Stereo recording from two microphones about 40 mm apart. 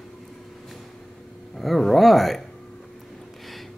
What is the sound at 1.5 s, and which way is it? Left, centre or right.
Speech, centre.